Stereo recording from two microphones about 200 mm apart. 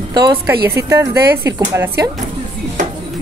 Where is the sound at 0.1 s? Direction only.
20° right (ahead or behind).